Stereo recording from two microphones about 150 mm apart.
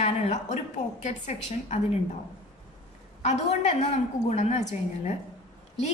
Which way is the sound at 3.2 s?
45° left (ahead or behind).